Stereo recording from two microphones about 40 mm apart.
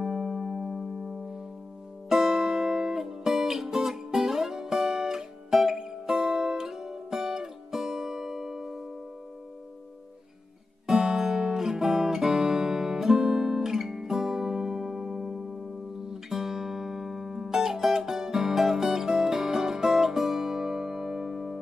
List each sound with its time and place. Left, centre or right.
0.0 s music: centre
10.9 s music: centre
11.5 s guitar: centre
16.1 s music: centre